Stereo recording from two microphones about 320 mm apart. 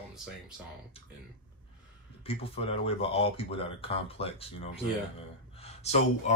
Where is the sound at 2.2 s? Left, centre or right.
Centre.